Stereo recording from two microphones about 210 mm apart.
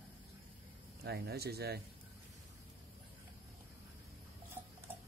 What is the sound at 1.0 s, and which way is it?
Speech, 50° right (ahead or behind).